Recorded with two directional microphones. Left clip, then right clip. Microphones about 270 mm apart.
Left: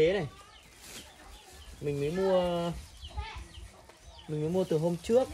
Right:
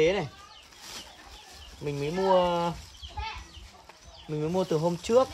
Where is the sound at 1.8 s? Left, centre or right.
Centre.